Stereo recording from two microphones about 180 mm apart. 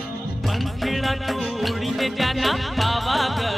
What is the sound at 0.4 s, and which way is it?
Music, centre (ahead or behind).